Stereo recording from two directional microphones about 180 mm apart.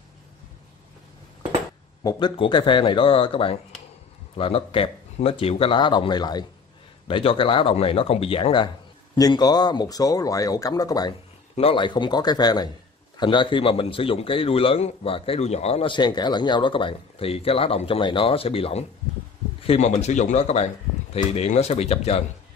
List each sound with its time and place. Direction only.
2.0 s a man's voice: 25° left (ahead or behind)